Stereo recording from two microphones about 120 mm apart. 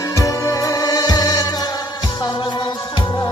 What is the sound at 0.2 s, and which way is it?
Music, 30° left (ahead or behind).